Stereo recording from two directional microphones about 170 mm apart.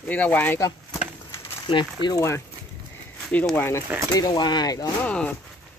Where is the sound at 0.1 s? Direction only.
10° left (ahead or behind).